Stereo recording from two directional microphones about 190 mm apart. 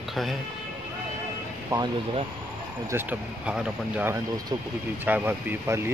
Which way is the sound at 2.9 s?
5° right (ahead or behind).